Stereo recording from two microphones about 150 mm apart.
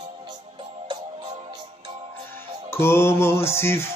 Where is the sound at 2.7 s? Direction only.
15° left (ahead or behind).